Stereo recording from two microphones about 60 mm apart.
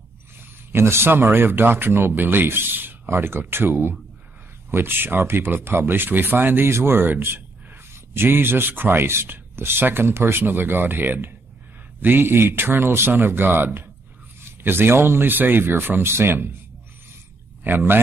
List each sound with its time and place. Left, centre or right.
0.7 s speech: right
6.7 s speech: right
17.6 s speech: right